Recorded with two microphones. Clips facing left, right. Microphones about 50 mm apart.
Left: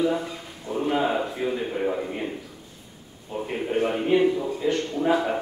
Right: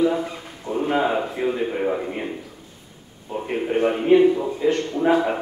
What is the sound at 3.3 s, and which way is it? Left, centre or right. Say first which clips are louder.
A man's voice: right 3 dB; centre.